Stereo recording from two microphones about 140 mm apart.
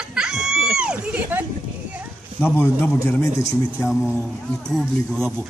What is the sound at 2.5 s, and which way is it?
Speech, 15° left (ahead or behind).